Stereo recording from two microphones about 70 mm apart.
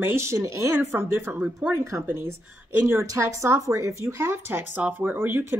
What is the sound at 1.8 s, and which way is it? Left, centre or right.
Speech, right.